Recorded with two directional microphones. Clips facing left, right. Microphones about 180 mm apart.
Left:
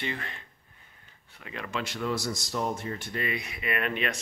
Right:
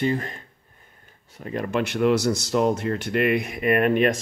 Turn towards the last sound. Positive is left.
turn(degrees=-45)  # may be behind; listen again after turning